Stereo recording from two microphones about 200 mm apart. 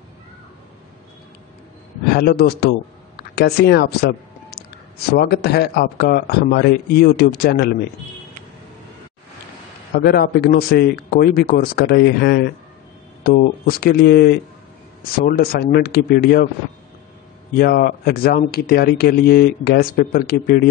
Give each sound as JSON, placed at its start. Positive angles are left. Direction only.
{"t": 2.1, "sound": "speech", "side_deg": 50}
{"t": 9.9, "sound": "speech", "side_deg": 50}
{"t": 13.7, "sound": "speech", "side_deg": 50}
{"t": 17.6, "sound": "speech", "side_deg": 50}